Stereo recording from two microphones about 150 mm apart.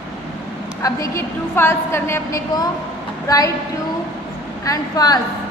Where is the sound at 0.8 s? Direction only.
20° left (ahead or behind).